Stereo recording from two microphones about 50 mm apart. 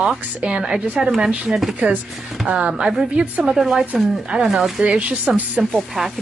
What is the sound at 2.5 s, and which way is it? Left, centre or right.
Speech, right.